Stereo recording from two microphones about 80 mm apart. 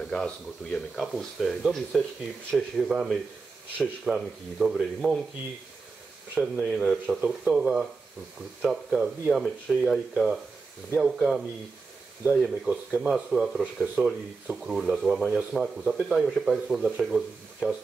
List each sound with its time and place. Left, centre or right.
0.0 s speech: centre
1.9 s speech: centre
6.3 s speech: centre
7.2 s speech: centre
12.3 s speech: centre
13.1 s speech: centre